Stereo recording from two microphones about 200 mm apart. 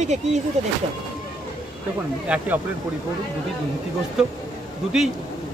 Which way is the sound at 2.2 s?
5° right (ahead or behind).